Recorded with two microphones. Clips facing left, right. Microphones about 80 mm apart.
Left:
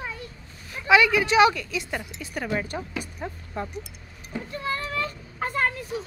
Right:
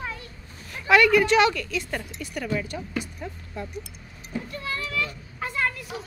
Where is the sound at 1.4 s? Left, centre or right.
Centre.